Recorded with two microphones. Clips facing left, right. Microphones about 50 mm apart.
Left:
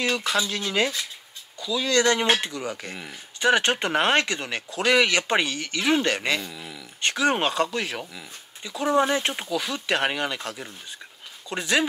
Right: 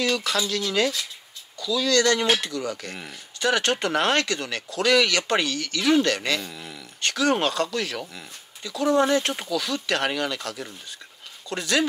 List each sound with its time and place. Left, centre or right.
0.0 s speech: left
6.4 s speech: centre
7.0 s speech: left